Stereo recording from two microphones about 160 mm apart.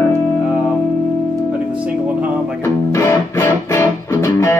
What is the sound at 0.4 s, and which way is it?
Music, centre (ahead or behind).